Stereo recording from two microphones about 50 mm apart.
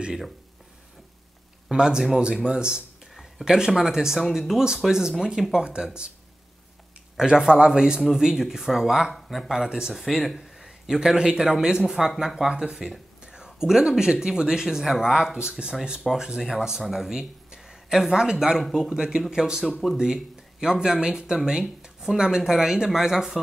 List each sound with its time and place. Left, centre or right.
1.7 s speech: centre
7.2 s speech: centre
9.1 s speech: centre
9.5 s speech: centre
10.0 s speech: centre
10.9 s speech: centre
13.2 s whispering: centre
13.5 s speech: centre
19.6 s speech: centre
20.6 s speech: centre